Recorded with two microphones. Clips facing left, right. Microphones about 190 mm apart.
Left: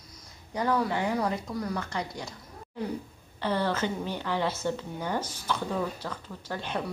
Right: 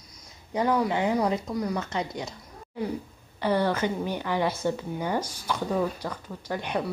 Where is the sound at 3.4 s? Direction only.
10° right (ahead or behind).